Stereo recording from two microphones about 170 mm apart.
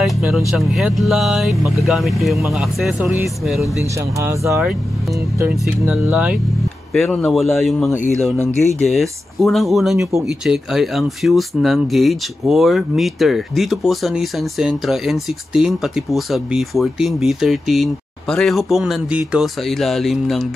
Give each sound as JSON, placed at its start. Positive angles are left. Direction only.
{"t": 0.0, "sound": "speech", "side_deg": -5}
{"t": 3.8, "sound": "speech", "side_deg": -15}
{"t": 6.9, "sound": "speech", "side_deg": 5}